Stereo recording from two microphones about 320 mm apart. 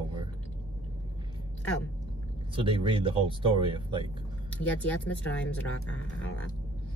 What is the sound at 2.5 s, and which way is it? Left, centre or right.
Speech, centre.